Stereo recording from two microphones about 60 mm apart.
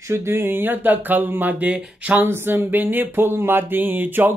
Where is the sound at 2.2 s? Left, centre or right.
Right.